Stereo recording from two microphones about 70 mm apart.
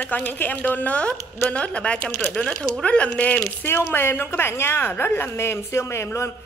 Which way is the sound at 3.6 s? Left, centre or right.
Left.